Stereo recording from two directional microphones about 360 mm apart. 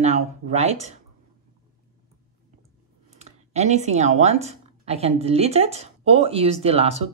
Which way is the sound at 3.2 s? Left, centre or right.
Centre.